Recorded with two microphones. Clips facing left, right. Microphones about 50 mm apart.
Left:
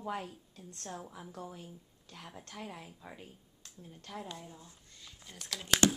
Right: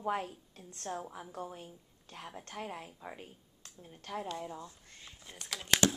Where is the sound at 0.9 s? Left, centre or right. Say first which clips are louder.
Right 5 dB; right.